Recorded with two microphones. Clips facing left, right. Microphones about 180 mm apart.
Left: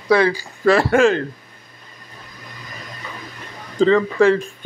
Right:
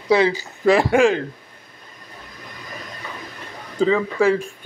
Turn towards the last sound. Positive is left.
turn(degrees=-5)  # may be behind; listen again after turning